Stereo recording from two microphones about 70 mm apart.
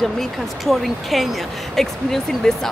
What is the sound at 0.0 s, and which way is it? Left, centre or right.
Speech, centre.